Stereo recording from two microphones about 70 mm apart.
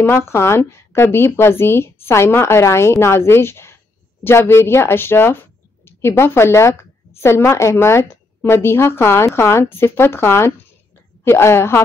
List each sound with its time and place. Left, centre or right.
0.0 s speech: left